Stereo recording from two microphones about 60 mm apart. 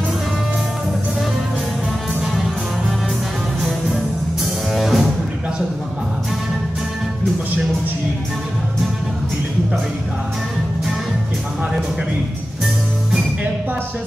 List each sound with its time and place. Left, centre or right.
4.7 s music: centre